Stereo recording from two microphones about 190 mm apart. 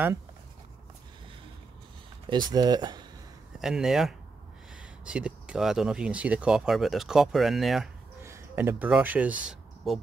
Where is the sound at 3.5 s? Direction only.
Centre (ahead or behind).